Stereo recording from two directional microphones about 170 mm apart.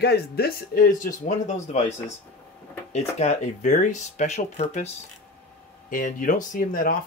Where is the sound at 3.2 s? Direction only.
45° left (ahead or behind).